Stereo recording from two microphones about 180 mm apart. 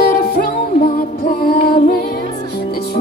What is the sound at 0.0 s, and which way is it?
Music, 60° left (ahead or behind).